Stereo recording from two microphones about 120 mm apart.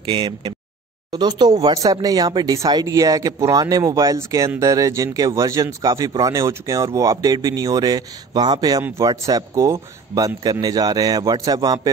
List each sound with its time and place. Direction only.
0.0 s speech: 45° right (ahead or behind)